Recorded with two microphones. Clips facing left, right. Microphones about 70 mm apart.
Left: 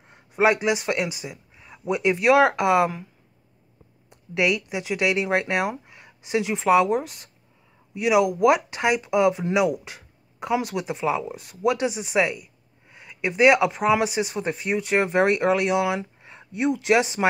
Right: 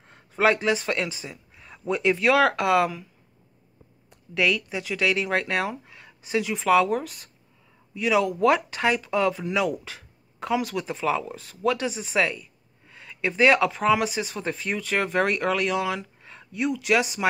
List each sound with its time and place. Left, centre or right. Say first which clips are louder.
0.1 s speech: left 1 dB; centre
4.4 s speech: left 1 dB; centre